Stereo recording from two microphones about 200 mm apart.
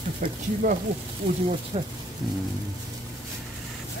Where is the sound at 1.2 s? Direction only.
30° right (ahead or behind).